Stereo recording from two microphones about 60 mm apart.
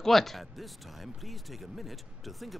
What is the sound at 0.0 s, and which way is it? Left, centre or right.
Speech, centre.